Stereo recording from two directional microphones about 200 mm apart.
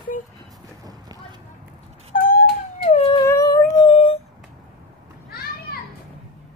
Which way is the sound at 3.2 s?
15° left (ahead or behind).